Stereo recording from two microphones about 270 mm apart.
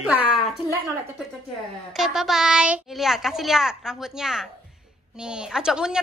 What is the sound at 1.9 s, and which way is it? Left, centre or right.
A child's voice, centre.